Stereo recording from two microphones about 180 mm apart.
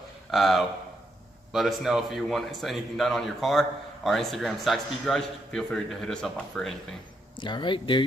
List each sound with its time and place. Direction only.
0.3 s speech: centre (ahead or behind)
7.3 s speech: 25° left (ahead or behind)